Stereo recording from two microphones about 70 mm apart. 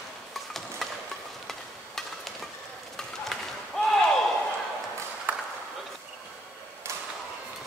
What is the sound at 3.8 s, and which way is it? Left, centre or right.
Slam, centre.